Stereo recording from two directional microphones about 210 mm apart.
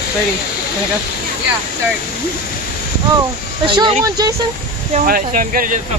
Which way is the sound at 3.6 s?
25° right (ahead or behind).